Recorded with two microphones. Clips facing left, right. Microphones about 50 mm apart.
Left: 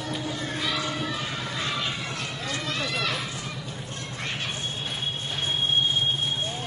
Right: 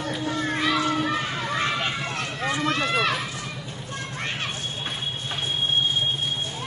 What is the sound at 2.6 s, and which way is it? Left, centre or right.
Run, right.